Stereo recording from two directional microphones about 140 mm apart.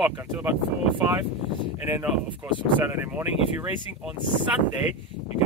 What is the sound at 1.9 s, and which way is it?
Speech, 15° right (ahead or behind).